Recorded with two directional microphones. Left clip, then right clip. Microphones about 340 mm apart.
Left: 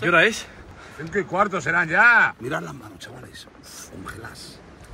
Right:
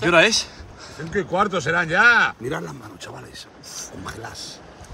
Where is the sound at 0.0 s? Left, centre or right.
Centre.